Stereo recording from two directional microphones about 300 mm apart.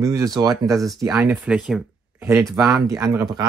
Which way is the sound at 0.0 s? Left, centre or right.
Centre.